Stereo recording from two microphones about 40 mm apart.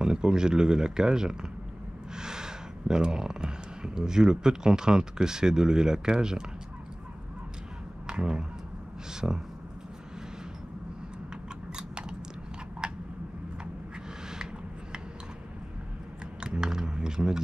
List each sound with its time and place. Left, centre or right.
0.0 s speech: centre
8.1 s speech: right
9.2 s speech: centre
11.7 s chewing: right
12.8 s a sound: centre
14.3 s rub: centre
16.3 s a sound: centre